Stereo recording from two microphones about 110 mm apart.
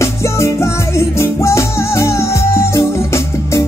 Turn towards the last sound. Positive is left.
turn(degrees=25)  # may be behind; listen again after turning